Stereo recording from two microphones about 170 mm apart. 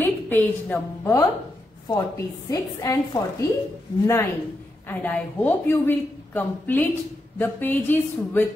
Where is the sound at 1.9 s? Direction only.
20° left (ahead or behind).